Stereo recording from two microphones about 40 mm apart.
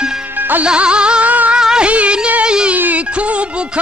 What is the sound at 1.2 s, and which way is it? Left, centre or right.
Music, right.